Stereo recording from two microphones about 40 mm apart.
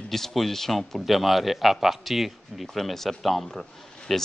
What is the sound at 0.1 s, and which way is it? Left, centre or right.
Speech, centre.